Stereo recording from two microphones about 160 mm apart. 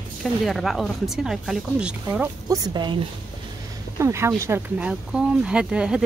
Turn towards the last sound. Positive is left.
turn(degrees=-5)  # may be behind; listen again after turning